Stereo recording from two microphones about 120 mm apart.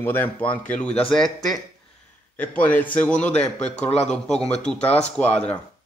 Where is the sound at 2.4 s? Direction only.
15° left (ahead or behind).